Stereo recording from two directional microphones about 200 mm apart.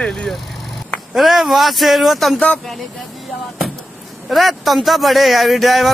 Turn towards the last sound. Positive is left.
turn(degrees=0)  # may be behind; listen again after turning